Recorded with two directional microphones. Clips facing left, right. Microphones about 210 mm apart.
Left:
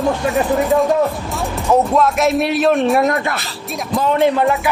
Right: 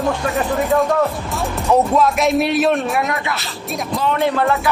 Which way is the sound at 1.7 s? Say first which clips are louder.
Left 1 dB; centre (ahead or behind).